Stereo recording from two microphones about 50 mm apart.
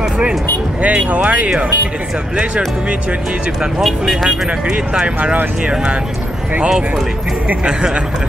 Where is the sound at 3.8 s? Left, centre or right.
Centre.